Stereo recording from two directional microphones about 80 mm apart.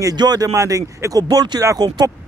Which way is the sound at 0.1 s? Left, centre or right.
Right.